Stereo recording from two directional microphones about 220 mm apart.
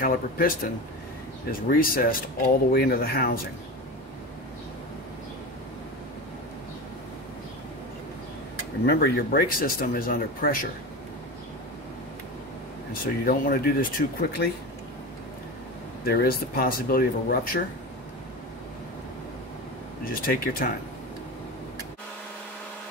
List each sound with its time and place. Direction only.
0.0 s speech: 40° left (ahead or behind)
1.7 s speech: 40° left (ahead or behind)
8.8 s speech: 45° left (ahead or behind)
13.0 s speech: 40° left (ahead or behind)
16.1 s speech: 45° left (ahead or behind)
20.2 s speech: 40° left (ahead or behind)